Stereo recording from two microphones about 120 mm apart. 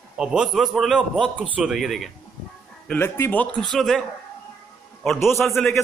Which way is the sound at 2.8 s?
15° left (ahead or behind).